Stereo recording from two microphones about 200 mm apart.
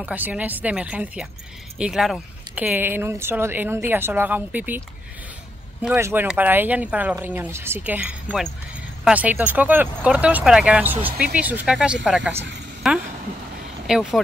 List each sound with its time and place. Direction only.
0.0 s speech: 10° right (ahead or behind)